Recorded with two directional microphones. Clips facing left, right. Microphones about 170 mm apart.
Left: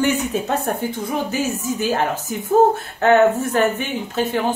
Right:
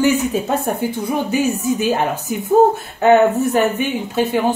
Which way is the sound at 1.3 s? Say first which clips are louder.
Right 5 dB; 15° right (ahead or behind).